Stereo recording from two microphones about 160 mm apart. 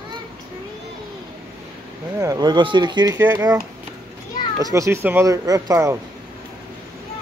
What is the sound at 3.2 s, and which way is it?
Speech, 15° right (ahead or behind).